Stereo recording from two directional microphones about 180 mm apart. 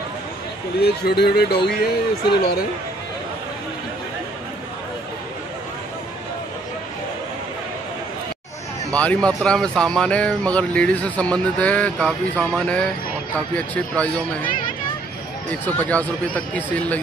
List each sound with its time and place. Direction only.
0.8 s speech: 60° left (ahead or behind)
8.9 s speech: 5° left (ahead or behind)
15.6 s speech: 10° left (ahead or behind)